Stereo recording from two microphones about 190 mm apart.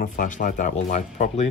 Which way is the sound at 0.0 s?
45° left (ahead or behind).